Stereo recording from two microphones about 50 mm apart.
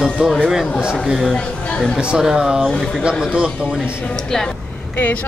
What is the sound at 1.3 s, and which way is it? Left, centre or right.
Speech, centre.